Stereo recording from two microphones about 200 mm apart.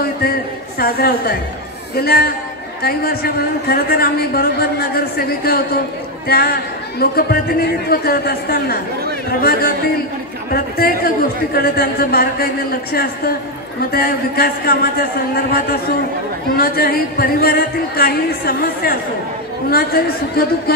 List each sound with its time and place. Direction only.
0.0 s a woman's voice: 50° left (ahead or behind)